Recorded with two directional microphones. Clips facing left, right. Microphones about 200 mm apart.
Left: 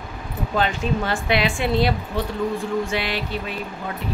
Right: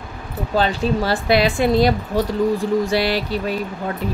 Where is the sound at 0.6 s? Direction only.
35° right (ahead or behind).